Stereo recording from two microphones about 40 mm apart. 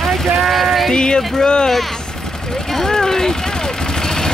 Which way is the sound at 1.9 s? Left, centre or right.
Centre.